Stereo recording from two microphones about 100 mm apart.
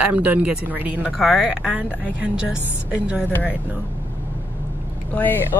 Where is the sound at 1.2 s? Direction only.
Centre (ahead or behind).